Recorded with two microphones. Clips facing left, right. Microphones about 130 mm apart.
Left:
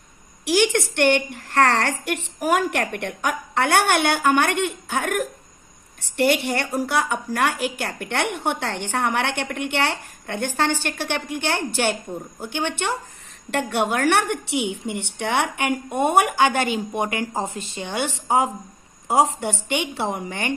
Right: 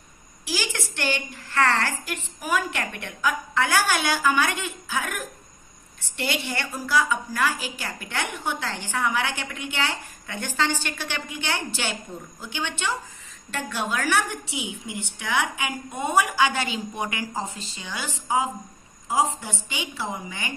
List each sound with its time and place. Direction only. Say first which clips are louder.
0.5 s a woman's voice: left 11 dB; 65° left (ahead or behind)